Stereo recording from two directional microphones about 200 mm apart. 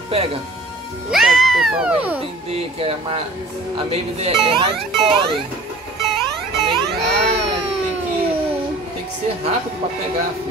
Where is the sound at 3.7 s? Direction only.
30° right (ahead or behind).